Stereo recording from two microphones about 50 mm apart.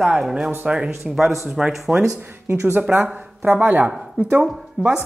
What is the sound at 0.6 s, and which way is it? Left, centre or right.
Speech, right.